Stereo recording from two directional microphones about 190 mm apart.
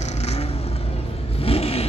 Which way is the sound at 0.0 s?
35° left (ahead or behind).